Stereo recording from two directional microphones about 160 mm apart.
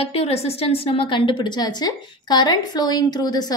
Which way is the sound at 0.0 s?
40° left (ahead or behind).